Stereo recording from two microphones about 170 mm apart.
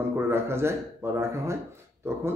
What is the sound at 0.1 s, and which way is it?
Speech, 15° right (ahead or behind).